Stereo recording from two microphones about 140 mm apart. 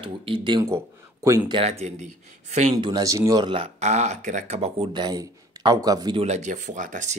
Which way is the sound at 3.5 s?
50° right (ahead or behind).